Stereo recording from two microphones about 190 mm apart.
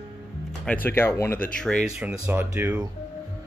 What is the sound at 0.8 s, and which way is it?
Speech, 10° left (ahead or behind).